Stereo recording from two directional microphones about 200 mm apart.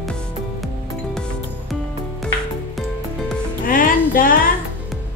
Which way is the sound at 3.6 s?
45° left (ahead or behind).